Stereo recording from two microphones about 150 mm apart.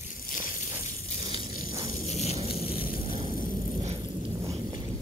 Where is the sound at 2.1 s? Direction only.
45° left (ahead or behind).